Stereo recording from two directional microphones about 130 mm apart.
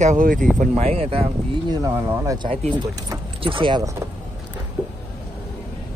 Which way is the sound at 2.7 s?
30° right (ahead or behind).